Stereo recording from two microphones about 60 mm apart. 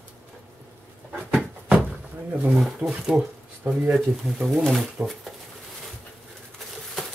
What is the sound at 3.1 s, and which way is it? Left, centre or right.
Speech, centre.